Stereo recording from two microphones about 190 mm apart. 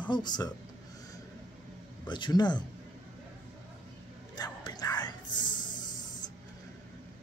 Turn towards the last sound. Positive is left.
turn(degrees=25)  # may be behind; listen again after turning